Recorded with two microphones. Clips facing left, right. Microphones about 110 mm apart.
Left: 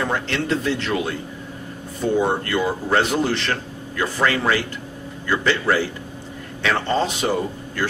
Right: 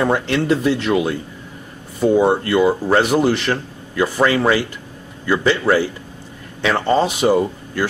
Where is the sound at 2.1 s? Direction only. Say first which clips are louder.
Right 5 dB; 15° right (ahead or behind).